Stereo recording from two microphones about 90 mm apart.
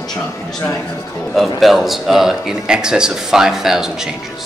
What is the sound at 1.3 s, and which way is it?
Speech, centre (ahead or behind).